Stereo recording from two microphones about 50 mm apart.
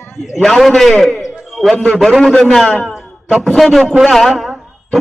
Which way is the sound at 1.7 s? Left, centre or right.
Centre.